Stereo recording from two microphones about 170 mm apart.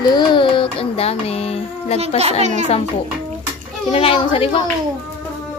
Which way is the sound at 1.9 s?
40° right (ahead or behind).